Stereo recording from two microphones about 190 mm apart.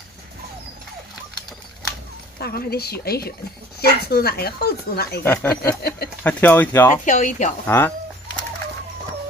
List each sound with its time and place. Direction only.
2.4 s speech: 55° left (ahead or behind)
5.2 s speech: 10° left (ahead or behind)
5.8 s speech: 55° left (ahead or behind)
6.2 s speech: 10° left (ahead or behind)
6.9 s speech: 40° left (ahead or behind)
7.6 s speech: 10° left (ahead or behind)